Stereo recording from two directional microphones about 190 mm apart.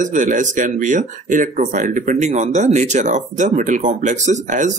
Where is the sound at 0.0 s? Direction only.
40° right (ahead or behind).